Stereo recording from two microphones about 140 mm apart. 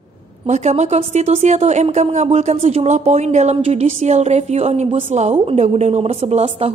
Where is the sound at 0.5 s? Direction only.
55° right (ahead or behind).